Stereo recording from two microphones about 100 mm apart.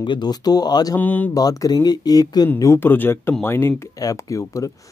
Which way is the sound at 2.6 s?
25° left (ahead or behind).